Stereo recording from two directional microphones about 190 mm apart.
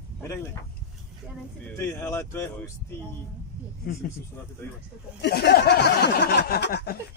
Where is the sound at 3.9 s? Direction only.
50° left (ahead or behind).